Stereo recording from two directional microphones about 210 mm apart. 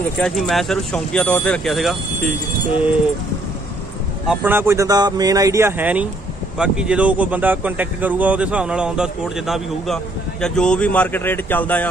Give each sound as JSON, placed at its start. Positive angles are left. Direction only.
{"t": 0.2, "sound": "speech", "side_deg": 0}
{"t": 4.3, "sound": "a man's voice", "side_deg": -10}